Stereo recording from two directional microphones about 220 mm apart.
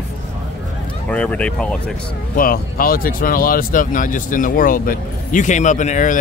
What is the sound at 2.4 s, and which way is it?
Speech, 40° left (ahead or behind).